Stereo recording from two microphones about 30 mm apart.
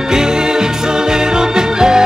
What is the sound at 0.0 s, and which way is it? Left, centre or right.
Music, right.